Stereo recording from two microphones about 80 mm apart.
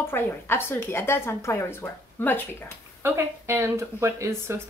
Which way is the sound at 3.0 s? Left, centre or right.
Right.